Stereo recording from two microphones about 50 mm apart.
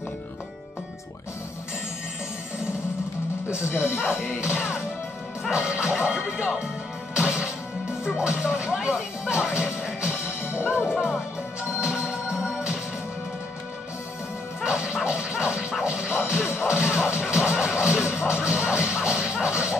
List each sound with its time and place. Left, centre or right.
3.6 s speech: left
4.2 s music: centre
7.2 s music: centre
10.4 s whip: left
10.9 s music: centre
11.8 s music: right
14.6 s music: centre
15.0 s a sound: centre
15.8 s music: right
17.6 s a sound: centre